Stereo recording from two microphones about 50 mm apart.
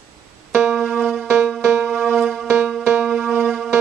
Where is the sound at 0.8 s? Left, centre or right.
Centre.